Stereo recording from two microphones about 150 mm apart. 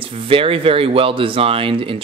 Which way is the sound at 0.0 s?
35° right (ahead or behind).